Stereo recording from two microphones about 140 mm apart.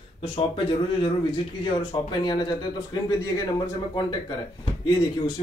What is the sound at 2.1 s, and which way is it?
Speech, 35° left (ahead or behind).